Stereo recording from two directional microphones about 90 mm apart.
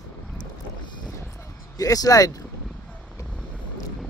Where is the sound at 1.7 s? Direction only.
40° left (ahead or behind).